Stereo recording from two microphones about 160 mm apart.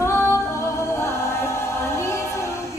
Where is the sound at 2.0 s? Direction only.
15° left (ahead or behind).